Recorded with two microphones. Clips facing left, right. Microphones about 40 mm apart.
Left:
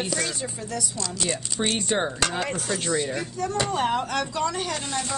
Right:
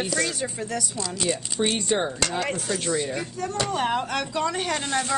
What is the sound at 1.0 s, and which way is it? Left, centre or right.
Speech, centre.